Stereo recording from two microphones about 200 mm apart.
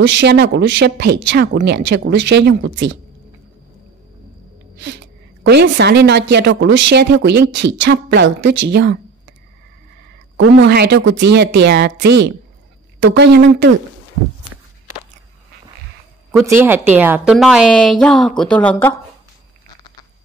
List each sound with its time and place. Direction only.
0.0 s speech: 60° right (ahead or behind)
4.7 s a sound: 60° right (ahead or behind)
5.5 s speech: 60° right (ahead or behind)
10.3 s speech: 65° right (ahead or behind)
16.3 s a woman's voice: 10° right (ahead or behind); by 18.9 s 10° left (ahead or behind)